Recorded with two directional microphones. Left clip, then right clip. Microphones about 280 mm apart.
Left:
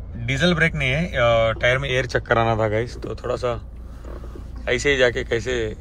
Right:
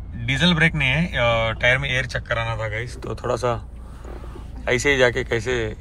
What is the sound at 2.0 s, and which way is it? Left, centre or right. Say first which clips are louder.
A man's voice: left 6 dB; left.